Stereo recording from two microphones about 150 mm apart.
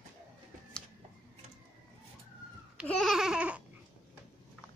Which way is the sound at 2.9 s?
Centre (ahead or behind).